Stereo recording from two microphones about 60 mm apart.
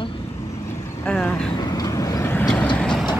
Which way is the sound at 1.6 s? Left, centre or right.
Left.